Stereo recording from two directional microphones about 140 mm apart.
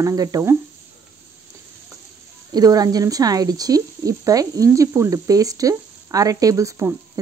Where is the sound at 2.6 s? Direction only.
25° right (ahead or behind).